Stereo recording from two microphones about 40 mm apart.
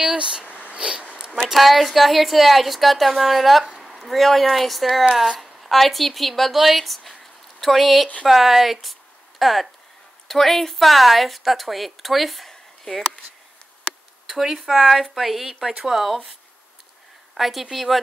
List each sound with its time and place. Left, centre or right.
0.1 s speech: right
0.5 s a sound: left
0.7 s speech: right
1.5 s speech: centre
12.4 s a sound: centre
14.2 s speech: centre
17.3 s speech: centre